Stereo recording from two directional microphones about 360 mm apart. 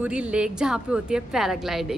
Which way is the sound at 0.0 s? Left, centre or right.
Centre.